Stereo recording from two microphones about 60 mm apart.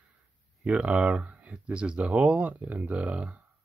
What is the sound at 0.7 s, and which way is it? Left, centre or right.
Speech, right.